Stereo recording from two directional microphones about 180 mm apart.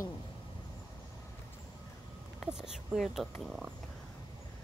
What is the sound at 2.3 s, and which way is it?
Speech, 5° right (ahead or behind).